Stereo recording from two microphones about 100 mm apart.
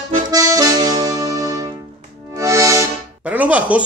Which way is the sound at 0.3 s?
35° right (ahead or behind).